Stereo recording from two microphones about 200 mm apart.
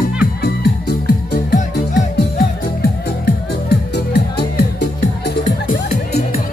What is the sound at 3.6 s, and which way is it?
Music, 55° left (ahead or behind).